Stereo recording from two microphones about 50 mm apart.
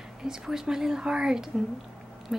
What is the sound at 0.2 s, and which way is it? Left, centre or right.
A woman's voice, centre.